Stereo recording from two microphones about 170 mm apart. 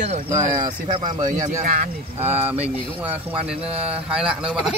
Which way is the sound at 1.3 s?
20° right (ahead or behind).